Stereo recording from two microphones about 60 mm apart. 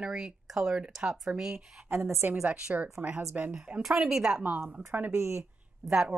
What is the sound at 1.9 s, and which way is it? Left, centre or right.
Speech, right.